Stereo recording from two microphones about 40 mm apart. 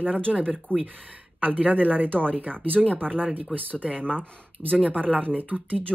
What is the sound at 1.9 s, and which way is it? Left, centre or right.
Speech, right.